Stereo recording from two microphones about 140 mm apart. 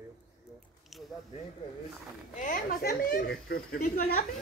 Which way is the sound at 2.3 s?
75° left (ahead or behind).